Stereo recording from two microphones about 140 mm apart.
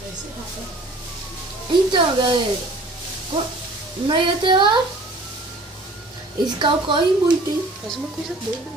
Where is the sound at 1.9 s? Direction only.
35° right (ahead or behind).